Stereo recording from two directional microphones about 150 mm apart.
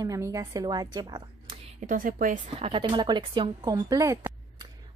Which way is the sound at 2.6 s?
35° right (ahead or behind).